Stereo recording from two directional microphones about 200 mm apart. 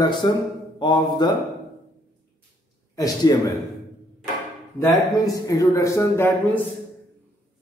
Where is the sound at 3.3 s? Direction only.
20° left (ahead or behind).